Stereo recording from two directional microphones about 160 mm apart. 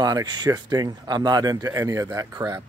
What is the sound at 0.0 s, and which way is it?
Speech, 25° right (ahead or behind).